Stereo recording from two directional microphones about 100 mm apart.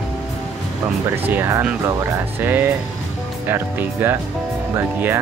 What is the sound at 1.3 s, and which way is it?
Speech, 20° right (ahead or behind).